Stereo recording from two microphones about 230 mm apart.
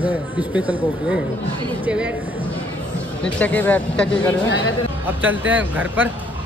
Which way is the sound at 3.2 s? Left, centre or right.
Centre.